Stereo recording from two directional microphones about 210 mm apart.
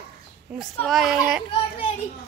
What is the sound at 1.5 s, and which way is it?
Children playing, 25° left (ahead or behind).